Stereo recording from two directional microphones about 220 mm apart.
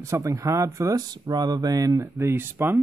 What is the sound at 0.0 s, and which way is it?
Speech, 15° right (ahead or behind).